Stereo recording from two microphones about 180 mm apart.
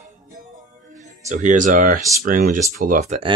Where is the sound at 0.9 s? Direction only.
40° right (ahead or behind).